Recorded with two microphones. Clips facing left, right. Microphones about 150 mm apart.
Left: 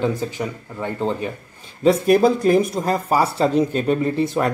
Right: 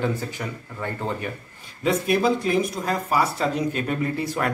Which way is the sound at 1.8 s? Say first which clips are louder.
Left 7 dB; 40° left (ahead or behind).